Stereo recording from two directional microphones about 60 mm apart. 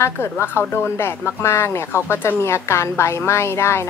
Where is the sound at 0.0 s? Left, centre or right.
Left.